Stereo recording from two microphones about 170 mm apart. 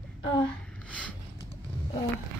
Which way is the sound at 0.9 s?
5° left (ahead or behind).